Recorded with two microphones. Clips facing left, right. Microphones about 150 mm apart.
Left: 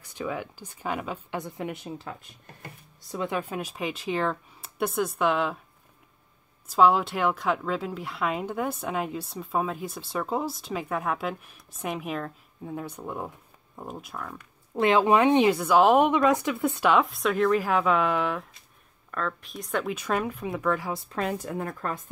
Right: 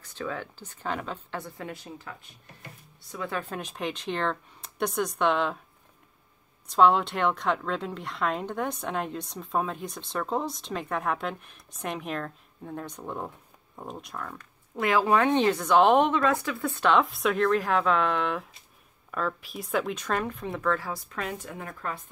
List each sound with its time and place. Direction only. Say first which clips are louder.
0.0 s a woman's voice: left 2 dB; 10° left (ahead or behind); by 2.1 s 25° left (ahead or behind)
3.2 s a woman's voice: left 3 dB; 15° left (ahead or behind)
6.7 s a woman's voice: even; 5° left (ahead or behind)
14.8 s a woman's voice: left 3 dB; 25° left (ahead or behind); by 16.1 s 5° left (ahead or behind)
16.1 s a woman's voice: left 3 dB; 15° left (ahead or behind)
16.9 s a woman's voice: left 1 dB; centre (ahead or behind)
20.9 s speech: left 4 dB; 30° left (ahead or behind)